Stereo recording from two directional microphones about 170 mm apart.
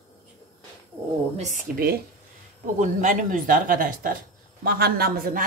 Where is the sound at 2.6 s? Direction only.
50° right (ahead or behind).